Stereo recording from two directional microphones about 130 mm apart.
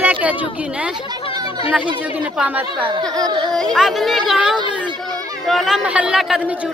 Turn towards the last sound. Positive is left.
turn(degrees=-5)  # may be behind; listen again after turning